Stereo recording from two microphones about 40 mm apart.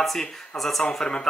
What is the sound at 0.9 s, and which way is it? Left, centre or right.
Speech, centre.